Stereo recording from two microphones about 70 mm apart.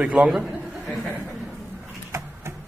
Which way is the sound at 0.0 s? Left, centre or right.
Centre.